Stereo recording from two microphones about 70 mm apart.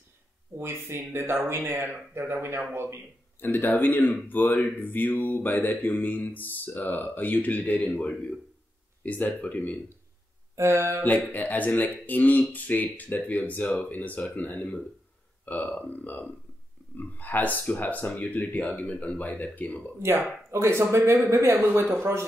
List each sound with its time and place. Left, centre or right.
0.6 s speech: right
3.3 s speech: left
10.5 s mantra: right
11.1 s speech: left
20.0 s speech: right